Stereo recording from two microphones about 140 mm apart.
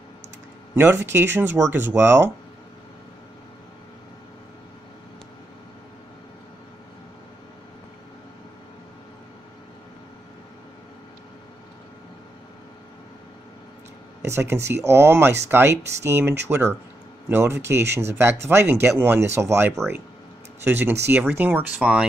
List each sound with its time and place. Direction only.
0.7 s speech: 15° right (ahead or behind)
14.2 s speech: 20° right (ahead or behind)